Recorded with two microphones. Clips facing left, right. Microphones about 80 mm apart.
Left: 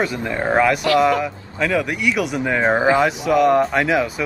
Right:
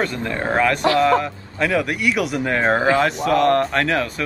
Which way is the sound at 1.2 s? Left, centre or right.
Centre.